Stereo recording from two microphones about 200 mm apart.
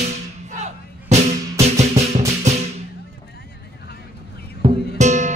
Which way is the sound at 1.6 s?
35° right (ahead or behind).